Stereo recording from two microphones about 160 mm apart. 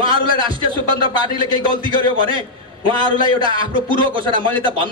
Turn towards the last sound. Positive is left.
turn(degrees=-30)  # may be behind; listen again after turning